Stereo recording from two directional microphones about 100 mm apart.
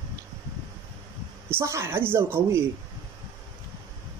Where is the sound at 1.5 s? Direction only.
25° right (ahead or behind).